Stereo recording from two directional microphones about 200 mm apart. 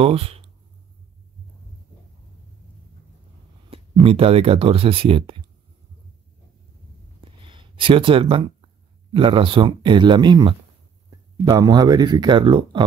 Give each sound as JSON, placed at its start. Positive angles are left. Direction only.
{"t": 0.0, "sound": "speech", "side_deg": -30}
{"t": 3.7, "sound": "speech", "side_deg": -30}
{"t": 7.2, "sound": "a sound", "side_deg": -25}
{"t": 9.1, "sound": "speech", "side_deg": -25}